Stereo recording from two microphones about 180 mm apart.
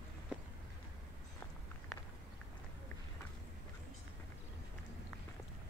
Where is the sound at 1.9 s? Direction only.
Centre (ahead or behind).